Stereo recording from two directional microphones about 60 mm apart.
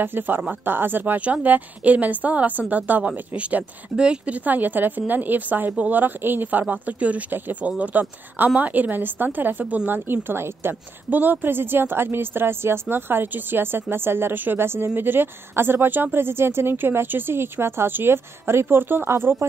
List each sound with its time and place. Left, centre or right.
0.0 s speech: right; by 4.4 s centre
4.5 s speech: right